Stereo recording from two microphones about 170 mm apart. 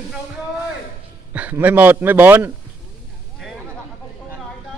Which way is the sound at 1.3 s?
10° right (ahead or behind).